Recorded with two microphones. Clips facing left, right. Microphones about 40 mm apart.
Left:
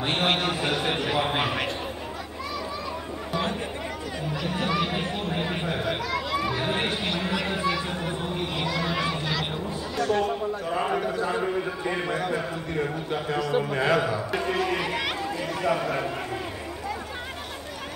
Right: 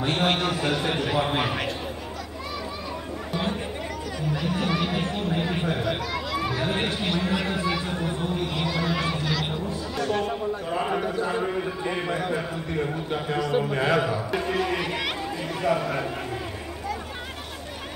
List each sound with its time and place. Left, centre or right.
0.0 s a man's voice: left; by 1.7 s centre
4.5 s a sound: centre
7.0 s a man's voice: centre
8.0 s chatter: centre
8.8 s a sound: centre
9.9 s a man's voice: centre